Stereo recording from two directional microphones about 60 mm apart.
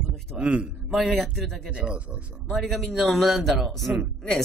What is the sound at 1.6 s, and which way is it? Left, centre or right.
Speech, centre.